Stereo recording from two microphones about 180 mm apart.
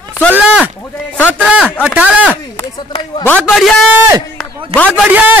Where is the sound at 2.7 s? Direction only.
25° left (ahead or behind).